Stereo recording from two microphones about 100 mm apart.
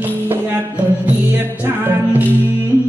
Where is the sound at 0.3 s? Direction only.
20° right (ahead or behind).